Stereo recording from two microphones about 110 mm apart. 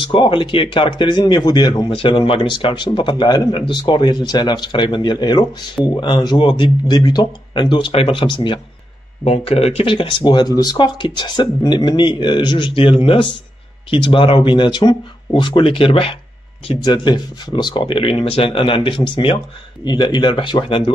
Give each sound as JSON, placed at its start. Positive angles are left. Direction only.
{"t": 0.1, "sound": "speech", "side_deg": 50}
{"t": 2.0, "sound": "speech", "side_deg": 50}
{"t": 9.2, "sound": "speech", "side_deg": 65}
{"t": 16.8, "sound": "speech", "side_deg": 45}